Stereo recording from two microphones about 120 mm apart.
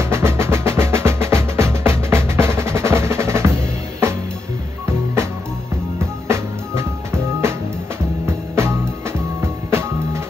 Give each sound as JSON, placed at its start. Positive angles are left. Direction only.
{"t": 0.0, "sound": "music", "side_deg": -20}
{"t": 4.8, "sound": "music", "side_deg": -25}